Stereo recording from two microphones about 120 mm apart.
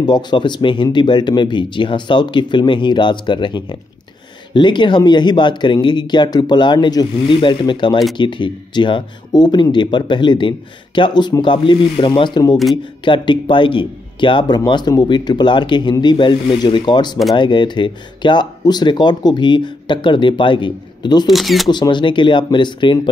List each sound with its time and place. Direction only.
0.0 s speech: 40° left (ahead or behind)
21.3 s speech: centre (ahead or behind)
21.6 s speech: 40° left (ahead or behind)